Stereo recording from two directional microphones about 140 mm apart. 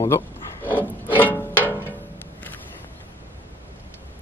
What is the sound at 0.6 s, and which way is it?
Rub, 15° right (ahead or behind).